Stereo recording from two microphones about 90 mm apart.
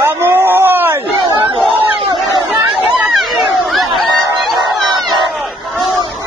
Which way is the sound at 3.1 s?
Centre (ahead or behind).